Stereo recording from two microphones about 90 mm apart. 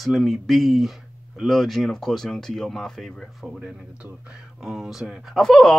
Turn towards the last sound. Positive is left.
turn(degrees=10)  # may be behind; listen again after turning